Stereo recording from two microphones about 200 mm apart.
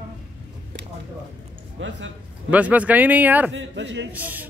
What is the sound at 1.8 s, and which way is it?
Speech, 65° right (ahead or behind).